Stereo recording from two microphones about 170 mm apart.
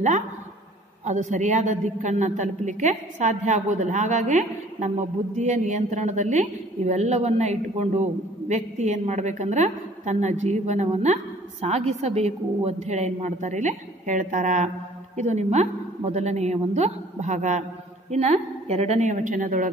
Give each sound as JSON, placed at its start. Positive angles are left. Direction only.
{"t": 1.0, "sound": "a woman's voice", "side_deg": -45}